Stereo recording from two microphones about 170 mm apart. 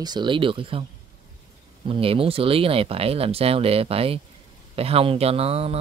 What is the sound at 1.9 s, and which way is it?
Speech, 35° right (ahead or behind).